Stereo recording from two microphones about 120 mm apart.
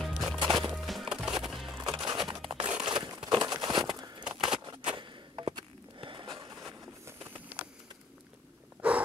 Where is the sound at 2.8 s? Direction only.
40° right (ahead or behind).